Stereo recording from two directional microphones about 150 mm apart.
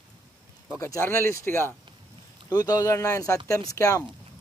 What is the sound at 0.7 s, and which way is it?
Speech, 20° left (ahead or behind).